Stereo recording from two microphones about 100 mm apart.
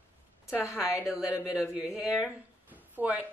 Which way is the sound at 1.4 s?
5° right (ahead or behind).